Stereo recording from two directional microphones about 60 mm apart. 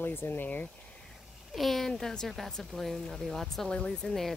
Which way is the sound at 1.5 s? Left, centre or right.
Centre.